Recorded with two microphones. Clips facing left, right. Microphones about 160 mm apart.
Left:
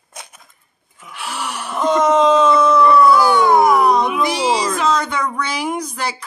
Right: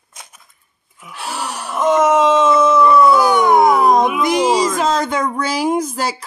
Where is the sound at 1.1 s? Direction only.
35° right (ahead or behind).